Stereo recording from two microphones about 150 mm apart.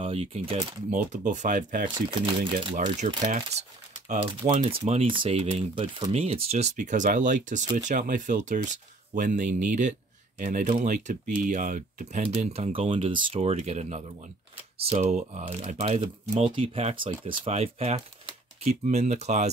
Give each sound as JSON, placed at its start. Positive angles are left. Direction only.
{"t": 0.0, "sound": "speech", "side_deg": -40}
{"t": 0.8, "sound": "speech", "side_deg": -50}
{"t": 2.0, "sound": "speech", "side_deg": -35}
{"t": 3.3, "sound": "speech", "side_deg": -55}
{"t": 4.2, "sound": "speech", "side_deg": -35}
{"t": 6.8, "sound": "speech", "side_deg": -55}
{"t": 16.0, "sound": "speech", "side_deg": -35}